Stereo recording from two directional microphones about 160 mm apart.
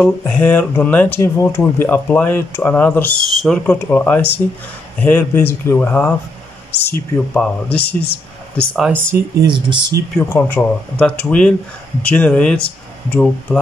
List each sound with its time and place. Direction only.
0.0 s speech: 10° left (ahead or behind)
3.6 s speech: 10° left (ahead or behind)
7.8 s speech: 80° left
8.7 s speech: 5° right (ahead or behind)
9.0 s speech: 15° right (ahead or behind)
10.1 s speech: 10° left (ahead or behind)